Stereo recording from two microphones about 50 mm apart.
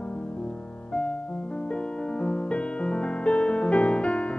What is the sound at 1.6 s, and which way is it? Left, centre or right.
Music, left.